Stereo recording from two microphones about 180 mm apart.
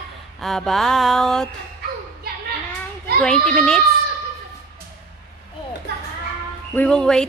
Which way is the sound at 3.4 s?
5° left (ahead or behind).